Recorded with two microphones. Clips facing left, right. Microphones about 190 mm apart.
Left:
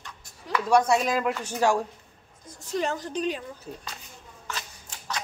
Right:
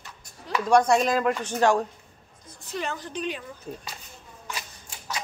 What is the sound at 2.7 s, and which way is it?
Speech, 40° left (ahead or behind).